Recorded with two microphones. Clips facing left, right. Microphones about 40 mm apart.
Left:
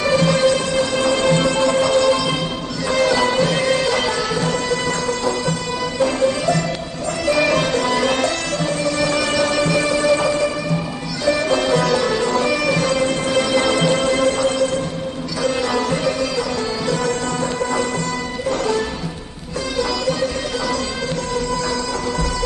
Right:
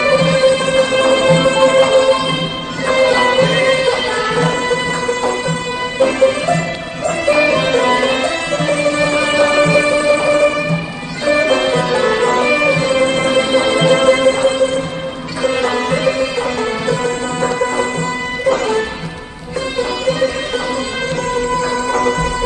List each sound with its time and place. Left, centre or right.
0.0 s music: right
0.7 s music: right
7.2 s music: right
7.7 s music: right
8.6 s music: right
10.3 s music: right
21.4 s music: right
21.9 s music: right